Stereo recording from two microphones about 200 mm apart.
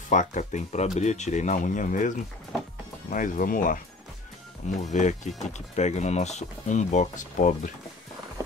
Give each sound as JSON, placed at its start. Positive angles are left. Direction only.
{"t": 0.1, "sound": "speech", "side_deg": 40}
{"t": 4.9, "sound": "speech", "side_deg": 35}